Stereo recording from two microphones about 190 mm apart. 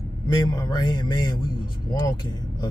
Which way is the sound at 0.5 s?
20° left (ahead or behind).